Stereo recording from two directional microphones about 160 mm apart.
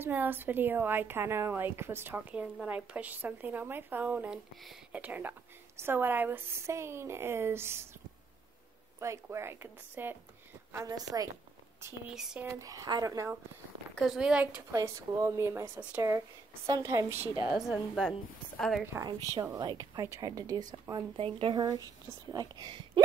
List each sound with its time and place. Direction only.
0.0 s a woman's voice: 10° right (ahead or behind)
9.0 s a woman's voice: 20° right (ahead or behind)
12.1 s a woman's voice: 5° right (ahead or behind)
12.4 s a woman's voice: 20° right (ahead or behind)
13.9 s a woman's voice: centre (ahead or behind)
14.7 s a woman's voice: 20° right (ahead or behind)
17.6 s a woman's voice: centre (ahead or behind)
18.9 s a woman's voice: 25° right (ahead or behind)